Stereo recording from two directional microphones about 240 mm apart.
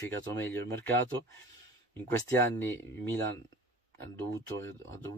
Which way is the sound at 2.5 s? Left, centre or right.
Centre.